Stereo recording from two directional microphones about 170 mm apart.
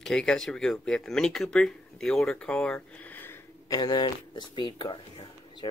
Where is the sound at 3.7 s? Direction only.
25° left (ahead or behind).